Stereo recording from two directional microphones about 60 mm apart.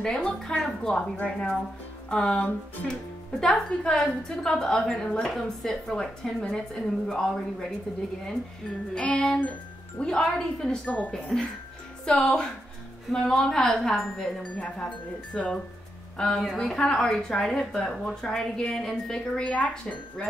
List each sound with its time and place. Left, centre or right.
0.0 s a woman's voice: centre
1.1 s speech: left
2.0 s speech: centre
2.3 s speech: left
2.9 s a woman's voice: centre
8.9 s a woman's voice: centre
15.3 s speech: left
16.2 s a woman's voice: centre